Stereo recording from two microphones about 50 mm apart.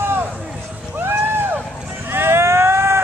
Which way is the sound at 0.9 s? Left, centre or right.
Right.